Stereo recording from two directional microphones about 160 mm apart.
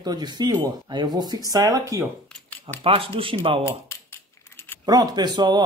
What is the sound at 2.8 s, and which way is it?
Speech, 35° right (ahead or behind).